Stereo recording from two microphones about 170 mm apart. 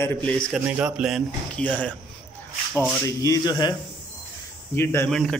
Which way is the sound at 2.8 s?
15° left (ahead or behind).